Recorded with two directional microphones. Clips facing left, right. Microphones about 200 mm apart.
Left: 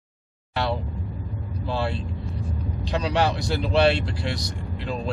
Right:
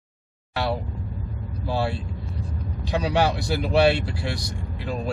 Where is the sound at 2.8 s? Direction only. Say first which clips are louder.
Right 1 dB; 10° right (ahead or behind).